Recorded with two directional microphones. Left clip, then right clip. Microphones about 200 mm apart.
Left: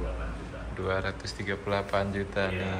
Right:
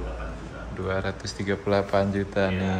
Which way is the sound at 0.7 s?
10° right (ahead or behind).